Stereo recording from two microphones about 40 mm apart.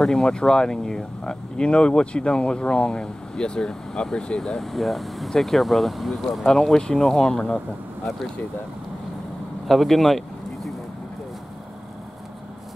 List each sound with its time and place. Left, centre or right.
0.0 s speech: centre
4.6 s speech: centre
6.5 s speech: centre
9.7 s a sound: centre